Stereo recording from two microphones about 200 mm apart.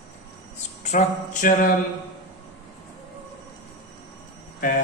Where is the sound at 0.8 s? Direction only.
40° left (ahead or behind).